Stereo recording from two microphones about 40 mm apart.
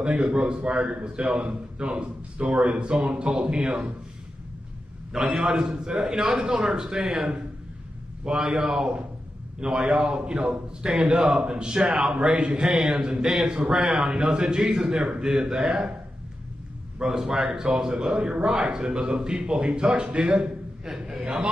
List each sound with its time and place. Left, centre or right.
0.0 s a man's voice: right
3.0 s a man's voice: centre
5.1 s a man's voice: centre
17.0 s a man's voice: centre